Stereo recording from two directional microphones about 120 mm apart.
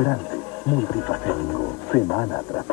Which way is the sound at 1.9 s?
25° left (ahead or behind).